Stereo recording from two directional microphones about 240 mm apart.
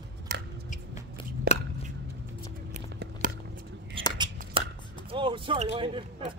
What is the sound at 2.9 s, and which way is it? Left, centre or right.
Biting, right.